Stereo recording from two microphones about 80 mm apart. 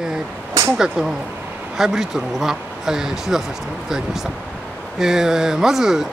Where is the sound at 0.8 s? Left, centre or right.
Centre.